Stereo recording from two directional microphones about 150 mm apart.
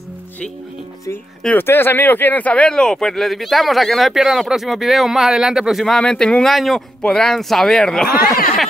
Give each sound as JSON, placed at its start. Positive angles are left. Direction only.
{"t": 1.4, "sound": "speech", "side_deg": 10}
{"t": 8.2, "sound": "speech", "side_deg": 80}